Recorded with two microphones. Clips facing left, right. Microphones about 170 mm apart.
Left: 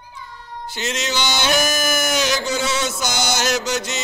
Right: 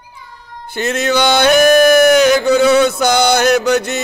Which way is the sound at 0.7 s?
55° right (ahead or behind).